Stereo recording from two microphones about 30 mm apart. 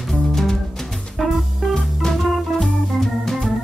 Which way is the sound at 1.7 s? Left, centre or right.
Centre.